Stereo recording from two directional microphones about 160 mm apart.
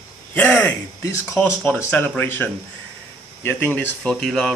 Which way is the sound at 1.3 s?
10° left (ahead or behind).